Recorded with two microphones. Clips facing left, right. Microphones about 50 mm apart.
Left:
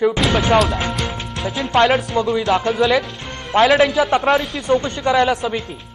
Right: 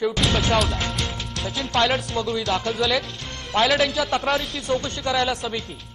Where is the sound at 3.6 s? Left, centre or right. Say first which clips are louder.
Left 7 dB; centre.